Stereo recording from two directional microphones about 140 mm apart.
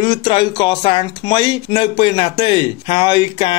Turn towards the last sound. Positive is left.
turn(degrees=35)  # may be behind; listen again after turning